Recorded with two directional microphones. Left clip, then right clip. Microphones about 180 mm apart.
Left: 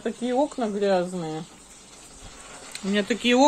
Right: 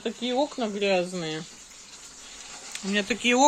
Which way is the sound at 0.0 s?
20° right (ahead or behind).